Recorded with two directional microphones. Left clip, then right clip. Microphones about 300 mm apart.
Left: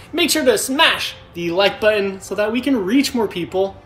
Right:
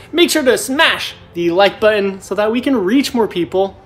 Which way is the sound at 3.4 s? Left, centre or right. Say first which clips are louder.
Right 3 dB; centre.